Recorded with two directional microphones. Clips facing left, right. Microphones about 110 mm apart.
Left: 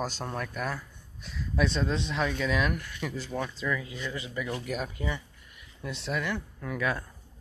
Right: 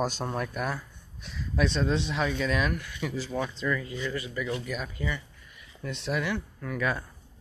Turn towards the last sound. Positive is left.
turn(degrees=0)  # may be behind; listen again after turning